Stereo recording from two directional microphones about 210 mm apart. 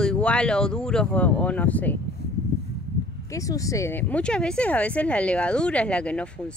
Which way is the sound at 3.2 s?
15° left (ahead or behind).